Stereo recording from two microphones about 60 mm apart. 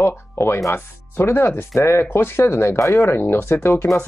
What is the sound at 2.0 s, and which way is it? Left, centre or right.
Speech, left.